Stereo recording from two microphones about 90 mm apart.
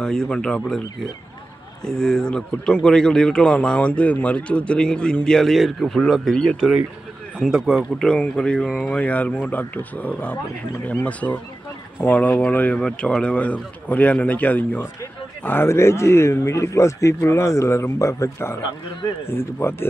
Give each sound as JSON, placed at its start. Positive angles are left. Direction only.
{"t": 0.0, "sound": "a man's voice", "side_deg": 10}
{"t": 1.9, "sound": "a man's voice", "side_deg": 10}
{"t": 8.1, "sound": "a man's voice", "side_deg": 10}
{"t": 9.0, "sound": "a man's voice", "side_deg": 15}